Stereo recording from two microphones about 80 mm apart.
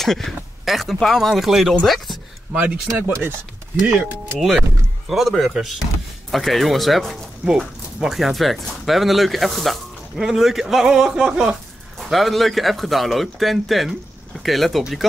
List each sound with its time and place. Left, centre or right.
0.0 s speech: centre
2.5 s speech: centre
3.1 s speech: right
4.4 s speech: centre